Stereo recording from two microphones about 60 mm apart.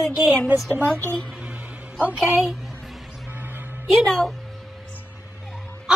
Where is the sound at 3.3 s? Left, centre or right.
Right.